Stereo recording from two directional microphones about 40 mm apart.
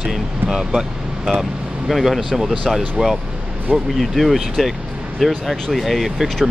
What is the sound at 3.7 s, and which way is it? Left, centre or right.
Speech, right.